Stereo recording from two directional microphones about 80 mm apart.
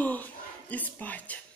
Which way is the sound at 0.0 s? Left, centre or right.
Left.